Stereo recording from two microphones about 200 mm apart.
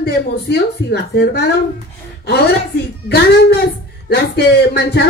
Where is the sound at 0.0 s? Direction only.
55° left (ahead or behind).